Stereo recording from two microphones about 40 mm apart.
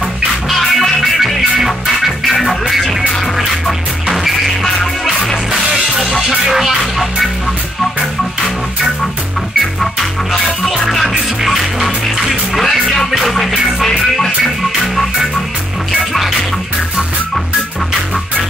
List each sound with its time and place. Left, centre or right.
0.5 s music: centre
5.9 s music: centre
10.7 s music: centre